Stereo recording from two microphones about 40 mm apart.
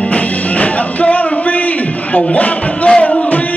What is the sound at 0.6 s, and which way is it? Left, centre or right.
Music, left.